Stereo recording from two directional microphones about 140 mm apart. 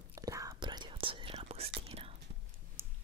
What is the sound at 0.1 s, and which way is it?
Whispering, 25° right (ahead or behind).